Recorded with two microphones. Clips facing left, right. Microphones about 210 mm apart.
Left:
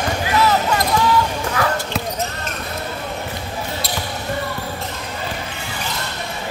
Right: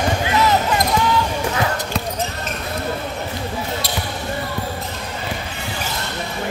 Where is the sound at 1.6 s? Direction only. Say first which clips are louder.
Left 3 dB; 20° right (ahead or behind).